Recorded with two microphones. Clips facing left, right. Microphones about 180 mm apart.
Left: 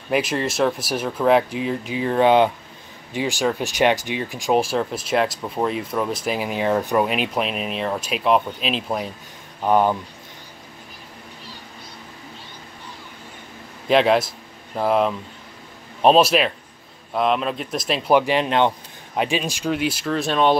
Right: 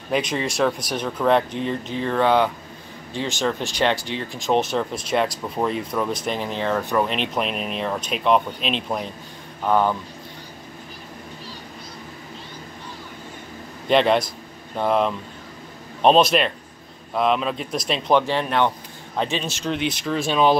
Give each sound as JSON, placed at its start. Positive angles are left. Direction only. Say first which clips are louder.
{"t": 0.1, "sound": "speech", "louder": "left 2 dB", "side_deg": 5}
{"t": 9.6, "sound": "speech", "louder": "left 2 dB", "side_deg": 15}
{"t": 13.8, "sound": "speech", "louder": "left 1 dB", "side_deg": 0}